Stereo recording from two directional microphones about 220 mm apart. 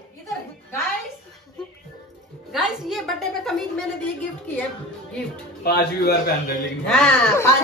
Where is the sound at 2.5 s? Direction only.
Centre (ahead or behind).